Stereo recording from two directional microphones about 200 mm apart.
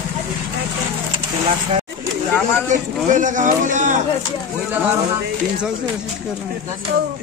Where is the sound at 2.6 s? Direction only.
40° right (ahead or behind).